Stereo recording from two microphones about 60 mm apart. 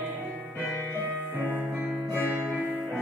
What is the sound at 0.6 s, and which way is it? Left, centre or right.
Music, left.